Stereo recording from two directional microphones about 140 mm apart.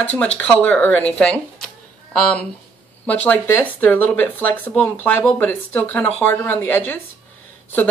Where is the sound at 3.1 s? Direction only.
10° left (ahead or behind).